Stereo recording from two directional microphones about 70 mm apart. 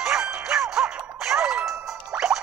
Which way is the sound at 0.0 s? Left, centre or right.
Centre.